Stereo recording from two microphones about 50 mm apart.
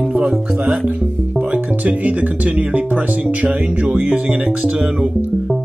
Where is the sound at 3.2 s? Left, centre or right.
Right.